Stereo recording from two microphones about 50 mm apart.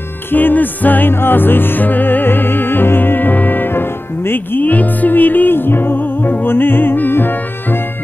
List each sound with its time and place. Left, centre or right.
0.3 s music: left